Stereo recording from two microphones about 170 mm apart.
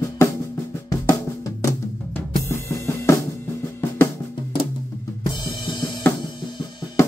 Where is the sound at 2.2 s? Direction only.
15° left (ahead or behind).